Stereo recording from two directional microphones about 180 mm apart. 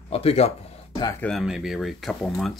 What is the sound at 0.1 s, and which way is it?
Speech, 35° left (ahead or behind).